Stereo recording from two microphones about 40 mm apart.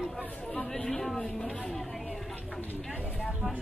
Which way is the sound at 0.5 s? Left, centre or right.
Centre.